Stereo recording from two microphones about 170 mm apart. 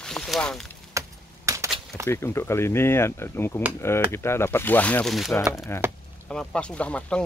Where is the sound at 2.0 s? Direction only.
15° left (ahead or behind).